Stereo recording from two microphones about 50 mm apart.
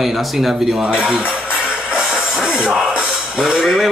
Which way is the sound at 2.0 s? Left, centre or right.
Centre.